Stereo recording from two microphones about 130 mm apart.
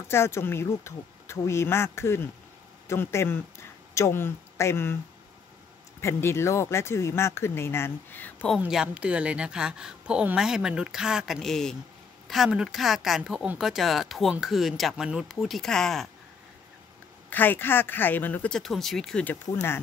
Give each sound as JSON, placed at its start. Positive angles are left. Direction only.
{"t": 0.1, "sound": "speech", "side_deg": 20}
{"t": 5.9, "sound": "speech", "side_deg": 20}
{"t": 8.5, "sound": "speech", "side_deg": -5}
{"t": 17.3, "sound": "speech", "side_deg": 15}
{"t": 18.6, "sound": "speech", "side_deg": 0}